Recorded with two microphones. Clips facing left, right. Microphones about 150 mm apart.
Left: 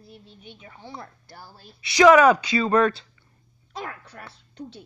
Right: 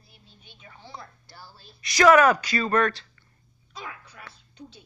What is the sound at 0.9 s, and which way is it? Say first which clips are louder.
Speech: left 3 dB; 50° left (ahead or behind).